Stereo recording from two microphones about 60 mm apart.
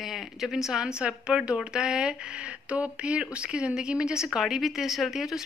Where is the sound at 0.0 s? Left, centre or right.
Centre.